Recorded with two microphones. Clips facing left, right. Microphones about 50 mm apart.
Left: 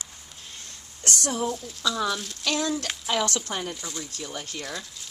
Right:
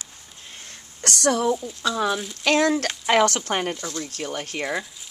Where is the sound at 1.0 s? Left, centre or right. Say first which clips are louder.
Right 6 dB; right.